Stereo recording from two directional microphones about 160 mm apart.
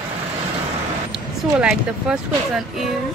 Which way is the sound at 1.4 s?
5° right (ahead or behind).